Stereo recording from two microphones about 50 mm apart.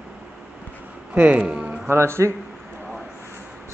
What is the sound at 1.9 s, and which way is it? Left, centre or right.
Speech, right.